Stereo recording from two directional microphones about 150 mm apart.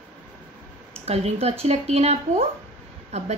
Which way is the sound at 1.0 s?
45° right (ahead or behind).